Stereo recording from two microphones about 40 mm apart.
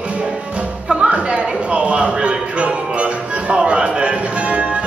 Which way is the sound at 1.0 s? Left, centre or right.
Right.